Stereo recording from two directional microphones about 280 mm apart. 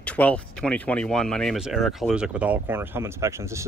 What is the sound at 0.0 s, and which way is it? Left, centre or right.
Speech, centre.